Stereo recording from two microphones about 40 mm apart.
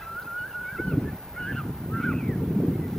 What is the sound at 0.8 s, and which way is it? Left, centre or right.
Goose, centre.